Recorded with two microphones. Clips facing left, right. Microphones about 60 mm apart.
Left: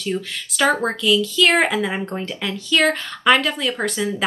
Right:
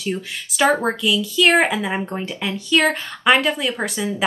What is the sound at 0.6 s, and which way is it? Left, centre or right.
A woman's voice, centre.